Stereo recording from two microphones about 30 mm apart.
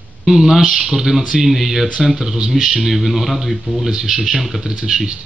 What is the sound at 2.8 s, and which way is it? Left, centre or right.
Speech, centre.